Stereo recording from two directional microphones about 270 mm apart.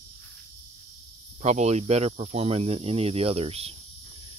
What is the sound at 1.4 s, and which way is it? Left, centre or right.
Speech, right.